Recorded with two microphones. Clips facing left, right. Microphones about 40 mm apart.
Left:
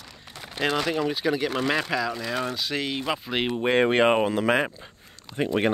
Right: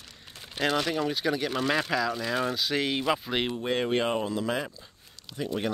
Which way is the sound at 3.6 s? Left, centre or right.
Left.